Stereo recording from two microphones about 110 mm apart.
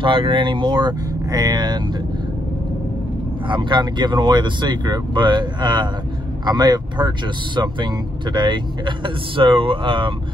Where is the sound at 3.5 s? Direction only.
45° right (ahead or behind).